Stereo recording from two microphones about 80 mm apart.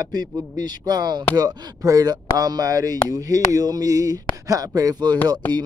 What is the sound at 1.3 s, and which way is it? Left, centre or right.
Speech, right.